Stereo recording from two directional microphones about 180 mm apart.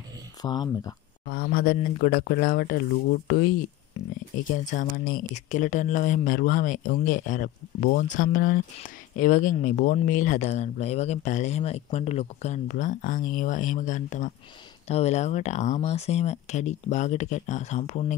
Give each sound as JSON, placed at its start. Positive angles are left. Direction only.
{"t": 0.4, "sound": "speech", "side_deg": 20}
{"t": 1.2, "sound": "speech", "side_deg": 50}
{"t": 4.5, "sound": "speech", "side_deg": 45}